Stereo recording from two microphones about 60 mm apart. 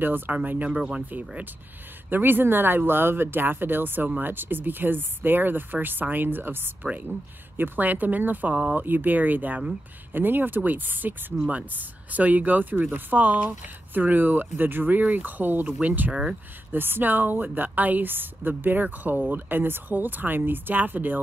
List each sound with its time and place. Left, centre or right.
0.0 s a woman's voice: right
0.7 s speech: centre
1.1 s a woman's voice: right
16.1 s speech: centre
16.7 s a woman's voice: right